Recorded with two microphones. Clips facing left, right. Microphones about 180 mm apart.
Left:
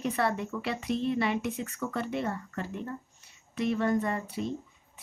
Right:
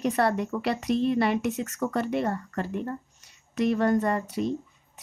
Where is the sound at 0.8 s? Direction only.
70° right (ahead or behind).